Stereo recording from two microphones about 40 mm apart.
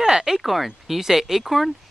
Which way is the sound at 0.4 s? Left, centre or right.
Centre.